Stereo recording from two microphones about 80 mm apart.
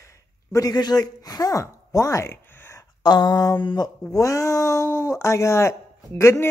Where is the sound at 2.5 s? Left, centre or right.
Left.